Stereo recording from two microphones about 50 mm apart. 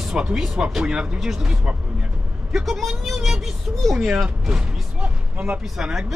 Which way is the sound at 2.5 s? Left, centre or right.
Centre.